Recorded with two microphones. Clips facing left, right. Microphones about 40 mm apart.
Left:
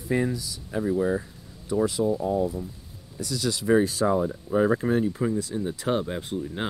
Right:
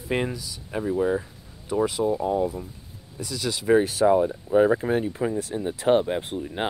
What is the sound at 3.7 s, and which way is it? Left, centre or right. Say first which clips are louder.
Speech: right 3 dB; right.